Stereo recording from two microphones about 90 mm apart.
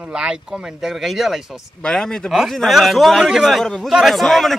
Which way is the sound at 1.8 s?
10° left (ahead or behind).